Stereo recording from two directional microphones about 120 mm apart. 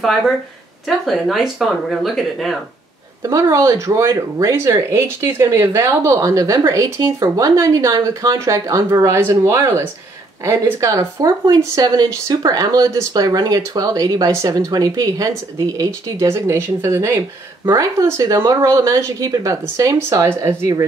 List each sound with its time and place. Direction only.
0.8 s speech: centre (ahead or behind)
3.2 s speech: 30° right (ahead or behind)